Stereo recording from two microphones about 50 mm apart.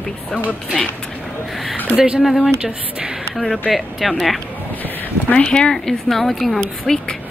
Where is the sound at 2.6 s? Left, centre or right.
Right.